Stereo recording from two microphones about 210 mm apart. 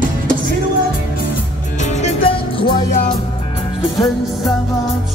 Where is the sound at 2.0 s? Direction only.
25° left (ahead or behind).